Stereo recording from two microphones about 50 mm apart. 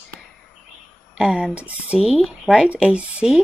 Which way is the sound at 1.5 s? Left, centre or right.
Right.